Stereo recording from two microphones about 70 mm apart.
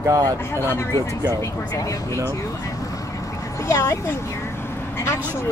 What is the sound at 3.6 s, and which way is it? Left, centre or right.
Speech, left.